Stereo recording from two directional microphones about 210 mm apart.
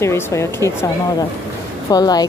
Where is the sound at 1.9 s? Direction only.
20° left (ahead or behind).